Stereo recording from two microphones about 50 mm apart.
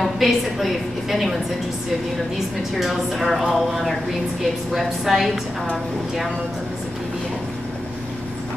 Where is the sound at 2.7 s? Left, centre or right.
Centre.